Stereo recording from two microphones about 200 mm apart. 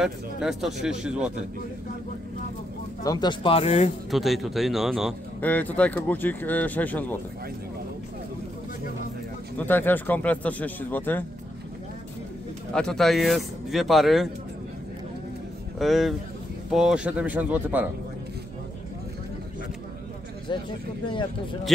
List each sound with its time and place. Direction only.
0.0 s speech: centre (ahead or behind)
3.0 s speech: 20° left (ahead or behind)
4.1 s speech: centre (ahead or behind)
9.6 s speech: 10° left (ahead or behind)
12.7 s speech: centre (ahead or behind)
15.8 s speech: centre (ahead or behind)
21.0 s speech: 25° left (ahead or behind)